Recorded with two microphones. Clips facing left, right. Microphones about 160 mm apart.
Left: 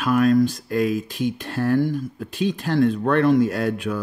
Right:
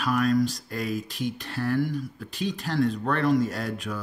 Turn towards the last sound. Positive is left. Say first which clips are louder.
# left 8 dB
turn(degrees=60)  # may be behind; listen again after turning